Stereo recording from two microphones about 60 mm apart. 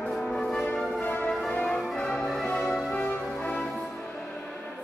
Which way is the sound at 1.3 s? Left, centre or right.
Centre.